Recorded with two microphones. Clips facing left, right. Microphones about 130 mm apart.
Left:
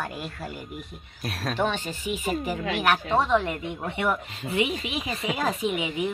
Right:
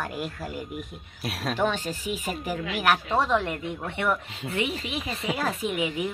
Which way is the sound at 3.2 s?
Centre (ahead or behind).